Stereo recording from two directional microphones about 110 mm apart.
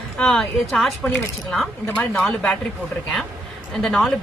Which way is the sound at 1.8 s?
15° left (ahead or behind).